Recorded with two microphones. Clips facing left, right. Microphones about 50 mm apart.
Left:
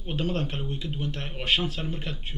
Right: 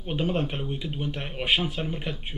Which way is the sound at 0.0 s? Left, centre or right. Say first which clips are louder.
Right 2 dB; centre.